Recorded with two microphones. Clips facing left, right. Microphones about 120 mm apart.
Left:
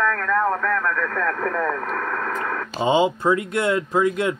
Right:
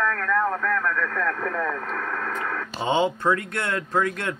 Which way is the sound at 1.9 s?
15° left (ahead or behind).